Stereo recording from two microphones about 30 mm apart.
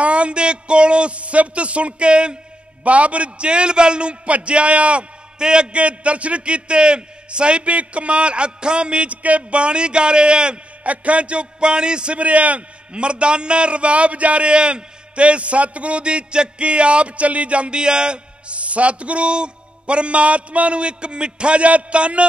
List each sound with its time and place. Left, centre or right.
0.0 s a man's voice: right
2.8 s a man's voice: right
5.4 s a man's voice: right
5.8 s a man's voice: right
10.8 s a man's voice: right
12.2 s a man's voice: right